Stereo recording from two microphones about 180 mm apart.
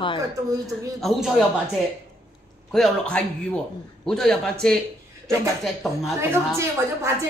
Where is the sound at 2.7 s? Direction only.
Centre (ahead or behind).